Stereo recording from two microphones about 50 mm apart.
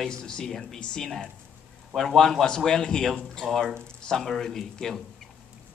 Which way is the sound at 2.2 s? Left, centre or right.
Centre.